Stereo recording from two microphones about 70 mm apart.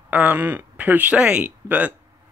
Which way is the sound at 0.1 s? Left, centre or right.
Right.